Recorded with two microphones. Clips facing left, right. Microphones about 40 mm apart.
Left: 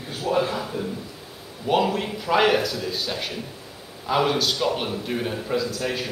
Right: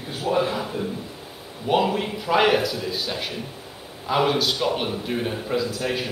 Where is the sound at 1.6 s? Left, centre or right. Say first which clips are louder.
Even; centre.